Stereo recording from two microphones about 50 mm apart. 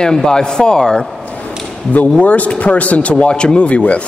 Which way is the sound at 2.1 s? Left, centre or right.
Left.